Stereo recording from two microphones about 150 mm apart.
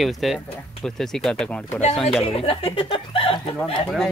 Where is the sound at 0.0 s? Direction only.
Centre (ahead or behind).